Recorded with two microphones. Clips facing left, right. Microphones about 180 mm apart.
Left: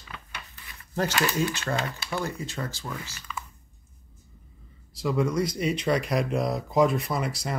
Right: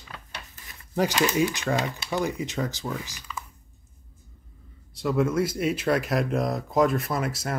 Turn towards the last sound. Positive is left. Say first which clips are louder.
# right 1 dB
turn(degrees=0)  # may be behind; listen again after turning